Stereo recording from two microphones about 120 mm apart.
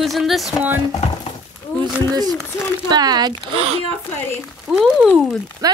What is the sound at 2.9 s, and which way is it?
Speech, 35° right (ahead or behind).